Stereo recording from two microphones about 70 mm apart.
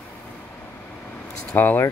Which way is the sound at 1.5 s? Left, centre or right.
Left.